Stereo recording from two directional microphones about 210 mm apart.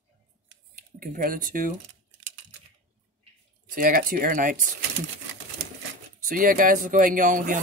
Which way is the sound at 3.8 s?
45° right (ahead or behind).